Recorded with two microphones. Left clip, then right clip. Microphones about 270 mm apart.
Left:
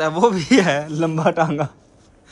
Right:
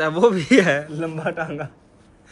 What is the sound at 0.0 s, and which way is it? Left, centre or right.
Speech, centre.